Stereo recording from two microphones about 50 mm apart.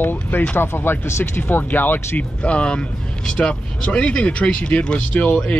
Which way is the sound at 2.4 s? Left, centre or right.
Left.